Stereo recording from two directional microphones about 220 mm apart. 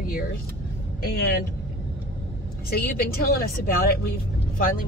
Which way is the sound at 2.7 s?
45° left (ahead or behind).